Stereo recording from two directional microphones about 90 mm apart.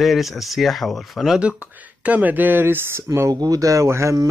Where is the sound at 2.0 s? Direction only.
15° right (ahead or behind).